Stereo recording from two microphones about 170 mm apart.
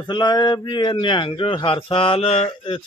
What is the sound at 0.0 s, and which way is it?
A man's voice, 25° left (ahead or behind).